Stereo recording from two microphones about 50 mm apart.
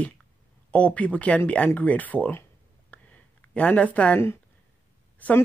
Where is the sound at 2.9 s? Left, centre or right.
Left.